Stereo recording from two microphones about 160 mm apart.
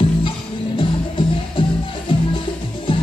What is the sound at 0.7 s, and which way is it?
Music, 35° left (ahead or behind).